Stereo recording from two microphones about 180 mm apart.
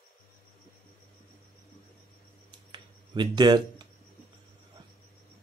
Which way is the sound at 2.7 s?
25° right (ahead or behind).